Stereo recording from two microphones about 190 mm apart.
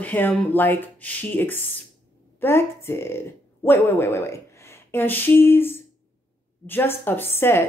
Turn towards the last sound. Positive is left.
turn(degrees=10)  # may be behind; listen again after turning